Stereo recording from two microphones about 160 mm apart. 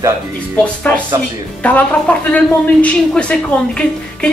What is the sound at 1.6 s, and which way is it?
Speech, 10° left (ahead or behind).